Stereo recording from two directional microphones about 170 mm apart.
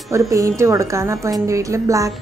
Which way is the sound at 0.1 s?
15° right (ahead or behind).